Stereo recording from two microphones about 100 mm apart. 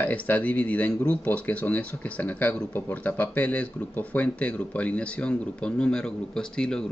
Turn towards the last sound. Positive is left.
turn(degrees=10)  # may be behind; listen again after turning